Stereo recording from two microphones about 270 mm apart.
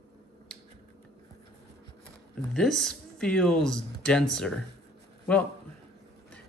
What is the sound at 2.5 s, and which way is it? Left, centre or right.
Speech, centre.